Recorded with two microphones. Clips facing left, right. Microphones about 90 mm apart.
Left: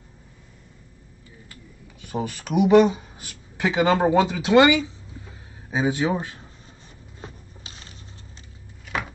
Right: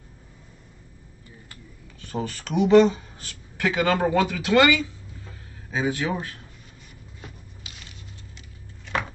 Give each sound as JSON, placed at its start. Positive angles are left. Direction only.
{"t": 2.0, "sound": "speech", "side_deg": 10}
{"t": 7.2, "sound": "a sound", "side_deg": 30}
{"t": 8.8, "sound": "chopping", "side_deg": 5}